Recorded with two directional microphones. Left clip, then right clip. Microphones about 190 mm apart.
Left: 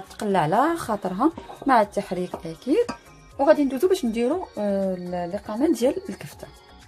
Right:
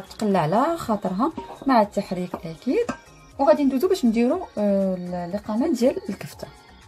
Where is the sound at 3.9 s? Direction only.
15° left (ahead or behind).